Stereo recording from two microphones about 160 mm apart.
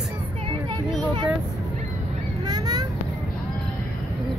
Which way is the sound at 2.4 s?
25° right (ahead or behind).